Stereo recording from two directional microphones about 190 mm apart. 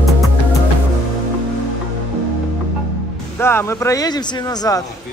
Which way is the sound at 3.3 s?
15° left (ahead or behind).